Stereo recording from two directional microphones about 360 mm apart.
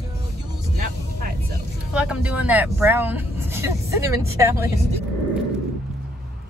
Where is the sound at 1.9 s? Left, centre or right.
Centre.